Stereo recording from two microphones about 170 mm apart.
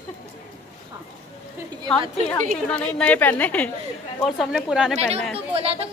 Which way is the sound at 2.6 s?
5° left (ahead or behind).